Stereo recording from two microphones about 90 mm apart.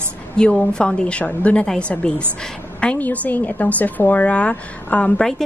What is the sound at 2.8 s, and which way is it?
A woman's voice, 15° left (ahead or behind).